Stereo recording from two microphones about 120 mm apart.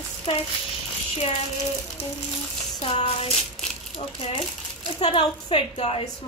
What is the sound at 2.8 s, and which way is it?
A woman's voice, 50° left (ahead or behind).